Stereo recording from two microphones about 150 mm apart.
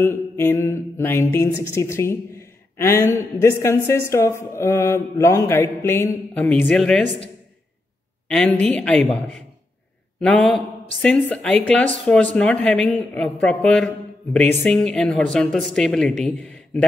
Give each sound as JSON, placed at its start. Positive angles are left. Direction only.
{"t": 0.0, "sound": "a woman's voice", "side_deg": 15}
{"t": 8.3, "sound": "speech", "side_deg": 5}
{"t": 10.2, "sound": "speech", "side_deg": 5}